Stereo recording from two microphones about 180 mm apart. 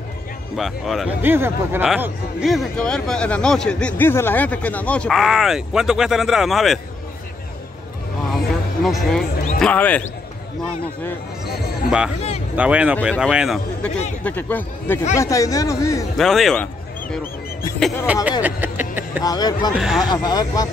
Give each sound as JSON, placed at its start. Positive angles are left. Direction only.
{"t": 0.6, "sound": "speech", "side_deg": 0}
{"t": 1.2, "sound": "speech", "side_deg": -10}
{"t": 8.5, "sound": "a sound", "side_deg": 0}
{"t": 9.6, "sound": "a man's voice", "side_deg": 10}
{"t": 12.5, "sound": "speech", "side_deg": -5}
{"t": 14.2, "sound": "a man's voice", "side_deg": 10}
{"t": 16.2, "sound": "speech", "side_deg": 0}
{"t": 17.7, "sound": "speech", "side_deg": 0}
{"t": 18.4, "sound": "a sound", "side_deg": -10}
{"t": 19.2, "sound": "speech", "side_deg": 20}
{"t": 19.7, "sound": "speech", "side_deg": 0}
{"t": 20.1, "sound": "speech", "side_deg": 20}